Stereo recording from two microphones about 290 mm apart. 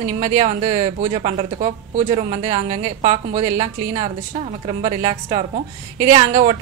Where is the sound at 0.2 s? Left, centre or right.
Right.